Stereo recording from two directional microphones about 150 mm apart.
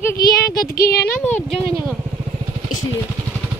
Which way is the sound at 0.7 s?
85° left.